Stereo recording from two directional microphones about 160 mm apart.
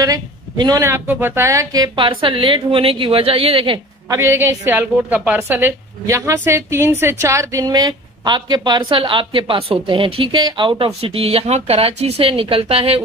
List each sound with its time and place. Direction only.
0.0 s a woman's voice: 25° right (ahead or behind)
4.1 s a woman's voice: 15° right (ahead or behind); by 13.0 s 40° right (ahead or behind)